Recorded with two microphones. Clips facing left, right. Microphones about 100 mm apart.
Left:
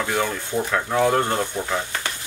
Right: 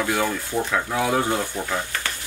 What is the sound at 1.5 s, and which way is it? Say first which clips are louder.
Speech: left 1 dB; 15° left (ahead or behind).